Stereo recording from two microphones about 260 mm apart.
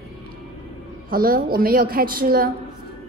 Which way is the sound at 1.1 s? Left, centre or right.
Right.